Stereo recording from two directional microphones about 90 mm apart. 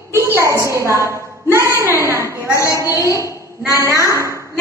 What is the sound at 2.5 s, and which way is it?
Speech, 35° left (ahead or behind).